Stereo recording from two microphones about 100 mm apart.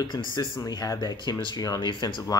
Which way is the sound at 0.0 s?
50° left (ahead or behind).